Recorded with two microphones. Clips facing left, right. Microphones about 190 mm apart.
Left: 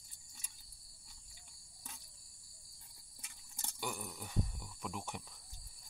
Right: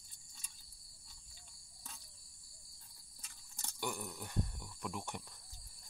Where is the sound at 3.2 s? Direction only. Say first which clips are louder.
Left 1 dB; 15° left (ahead or behind).